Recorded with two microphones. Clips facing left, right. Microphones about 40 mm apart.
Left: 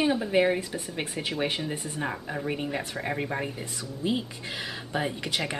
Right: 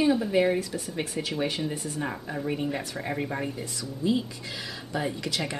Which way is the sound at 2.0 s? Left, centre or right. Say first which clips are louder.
Left 1 dB; centre.